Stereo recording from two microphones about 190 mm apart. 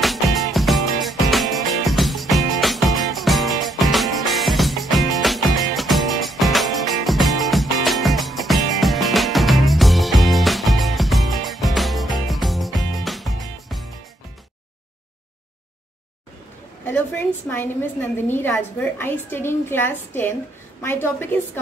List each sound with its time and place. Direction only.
0.0 s music: centre (ahead or behind)
16.8 s a woman's voice: 10° left (ahead or behind)